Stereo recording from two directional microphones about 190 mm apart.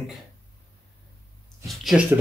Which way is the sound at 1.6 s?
Centre (ahead or behind).